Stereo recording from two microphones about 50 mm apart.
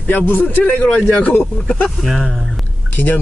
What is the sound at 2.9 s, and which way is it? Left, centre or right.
Speech, left.